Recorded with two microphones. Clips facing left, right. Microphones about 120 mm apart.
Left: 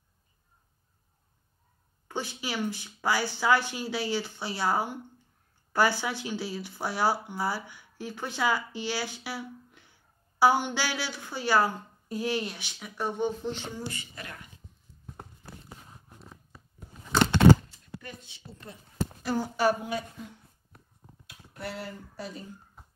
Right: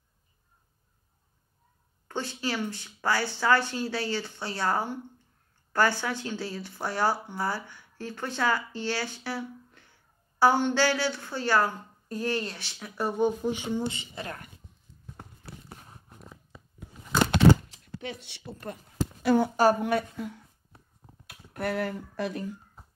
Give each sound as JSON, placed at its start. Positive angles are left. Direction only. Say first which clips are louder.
{"t": 2.0, "sound": "a woman's voice", "louder": "right 2 dB", "side_deg": 5}
{"t": 14.2, "sound": "speech", "louder": "right 5 dB", "side_deg": -45}
{"t": 17.6, "sound": "speech", "louder": "right 6 dB", "side_deg": -80}
{"t": 19.5, "sound": "speech", "louder": "right 3 dB", "side_deg": -45}
{"t": 19.8, "sound": "a woman's voice", "louder": "right 7 dB", "side_deg": -60}